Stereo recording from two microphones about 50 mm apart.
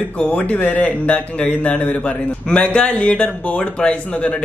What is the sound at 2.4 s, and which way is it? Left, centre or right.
Speech, left.